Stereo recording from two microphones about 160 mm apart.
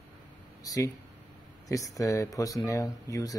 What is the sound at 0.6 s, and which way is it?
Speech, 20° left (ahead or behind).